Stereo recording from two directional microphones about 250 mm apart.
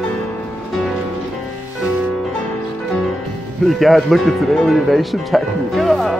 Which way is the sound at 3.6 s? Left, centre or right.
Centre.